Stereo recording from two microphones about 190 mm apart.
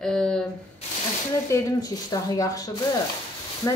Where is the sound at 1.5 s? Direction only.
20° left (ahead or behind).